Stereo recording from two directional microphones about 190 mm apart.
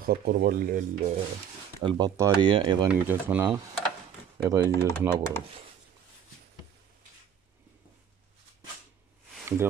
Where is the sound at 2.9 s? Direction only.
10° right (ahead or behind).